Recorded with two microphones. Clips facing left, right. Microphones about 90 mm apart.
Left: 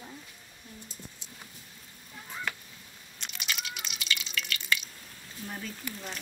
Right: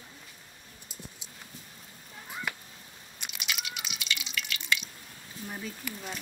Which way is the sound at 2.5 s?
10° right (ahead or behind).